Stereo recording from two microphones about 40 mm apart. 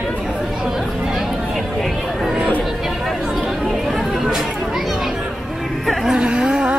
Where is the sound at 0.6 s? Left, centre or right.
Centre.